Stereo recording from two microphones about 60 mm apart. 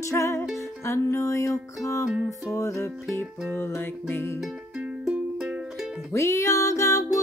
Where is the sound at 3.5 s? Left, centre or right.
Left.